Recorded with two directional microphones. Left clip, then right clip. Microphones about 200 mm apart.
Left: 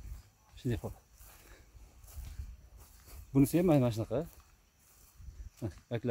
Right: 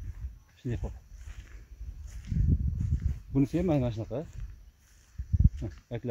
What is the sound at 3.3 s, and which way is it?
Speech, 10° left (ahead or behind).